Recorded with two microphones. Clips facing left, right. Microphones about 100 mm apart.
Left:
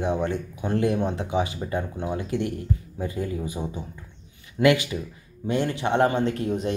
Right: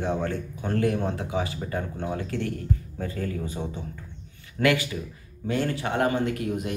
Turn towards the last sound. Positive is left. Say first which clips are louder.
# left 3 dB
turn(degrees=30)  # may be behind; listen again after turning